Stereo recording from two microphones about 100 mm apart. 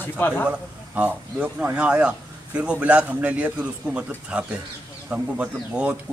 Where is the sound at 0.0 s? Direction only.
20° left (ahead or behind).